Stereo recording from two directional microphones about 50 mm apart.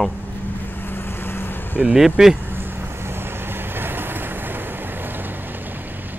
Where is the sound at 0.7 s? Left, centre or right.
Left.